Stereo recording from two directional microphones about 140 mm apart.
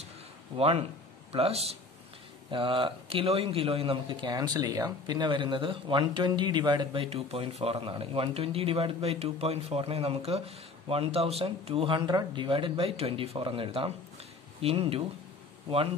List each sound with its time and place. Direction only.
0.6 s speech: 45° right (ahead or behind)